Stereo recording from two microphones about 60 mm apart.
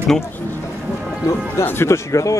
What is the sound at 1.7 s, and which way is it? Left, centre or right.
Speech, left.